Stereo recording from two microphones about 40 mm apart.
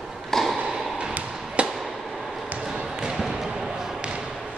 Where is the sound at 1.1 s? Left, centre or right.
Right.